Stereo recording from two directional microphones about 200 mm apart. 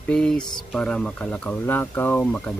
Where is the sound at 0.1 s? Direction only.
5° left (ahead or behind).